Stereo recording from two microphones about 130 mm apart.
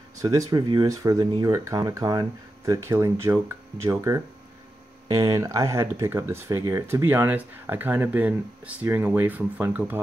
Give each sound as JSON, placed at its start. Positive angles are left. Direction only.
{"t": 0.2, "sound": "speech", "side_deg": -25}